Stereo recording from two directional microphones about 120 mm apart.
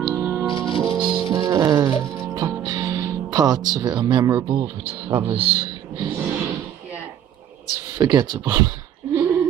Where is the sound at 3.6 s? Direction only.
35° right (ahead or behind).